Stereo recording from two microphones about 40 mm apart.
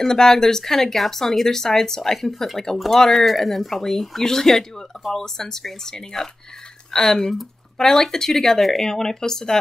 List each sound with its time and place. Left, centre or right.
0.0 s speech: centre